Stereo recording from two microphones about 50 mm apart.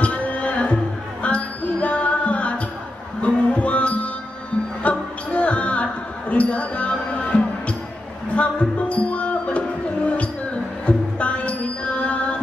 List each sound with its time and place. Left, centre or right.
0.0 s music: left
4.8 s basketball bounce: left
8.4 s music: left